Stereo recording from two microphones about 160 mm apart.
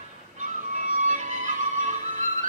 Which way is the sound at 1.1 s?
50° right (ahead or behind).